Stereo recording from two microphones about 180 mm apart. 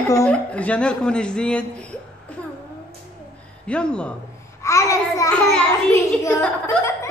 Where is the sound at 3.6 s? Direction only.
5° left (ahead or behind).